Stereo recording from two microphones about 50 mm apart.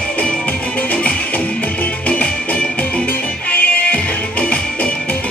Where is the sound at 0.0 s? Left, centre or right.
Left.